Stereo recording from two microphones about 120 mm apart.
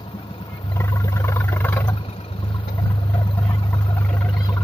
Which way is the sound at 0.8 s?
25° left (ahead or behind).